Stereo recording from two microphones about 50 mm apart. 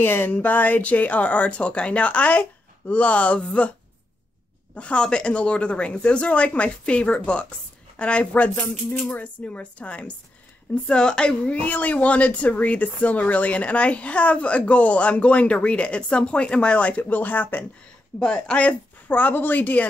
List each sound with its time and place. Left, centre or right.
0.0 s speech: left
0.3 s speech: left
4.7 s speech: left
18.2 s speech: left